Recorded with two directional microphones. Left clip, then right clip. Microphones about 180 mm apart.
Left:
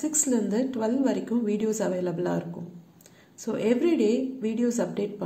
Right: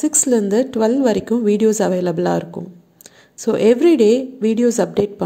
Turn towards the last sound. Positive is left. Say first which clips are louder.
# right 11 dB
turn(degrees=-45)  # may be behind; listen again after turning